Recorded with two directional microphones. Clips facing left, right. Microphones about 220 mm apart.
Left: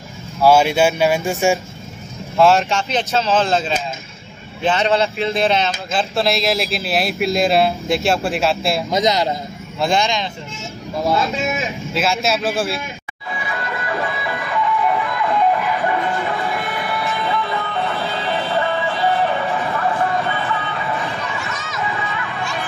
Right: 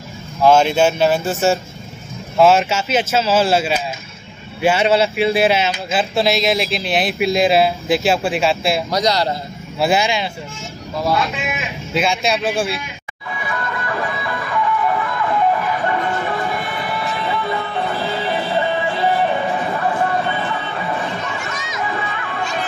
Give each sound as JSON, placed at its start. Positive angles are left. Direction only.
{"t": 0.5, "sound": "speech", "side_deg": 10}
{"t": 2.3, "sound": "speech", "side_deg": 0}
{"t": 8.9, "sound": "a man's voice", "side_deg": 20}
{"t": 9.8, "sound": "speech", "side_deg": -5}
{"t": 11.3, "sound": "speech", "side_deg": 30}
{"t": 11.9, "sound": "speech", "side_deg": 0}
{"t": 14.3, "sound": "music", "side_deg": 15}
{"t": 16.0, "sound": "music", "side_deg": 0}
{"t": 19.0, "sound": "a sound", "side_deg": -15}
{"t": 20.2, "sound": "music", "side_deg": -30}
{"t": 21.4, "sound": "a sound", "side_deg": -15}